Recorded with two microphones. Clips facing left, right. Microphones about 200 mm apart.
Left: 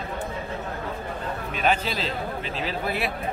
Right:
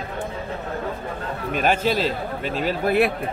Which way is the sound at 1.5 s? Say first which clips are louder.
Right 5 dB; 50° right (ahead or behind).